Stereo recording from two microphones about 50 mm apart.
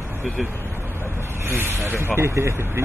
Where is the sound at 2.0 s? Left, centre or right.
Right.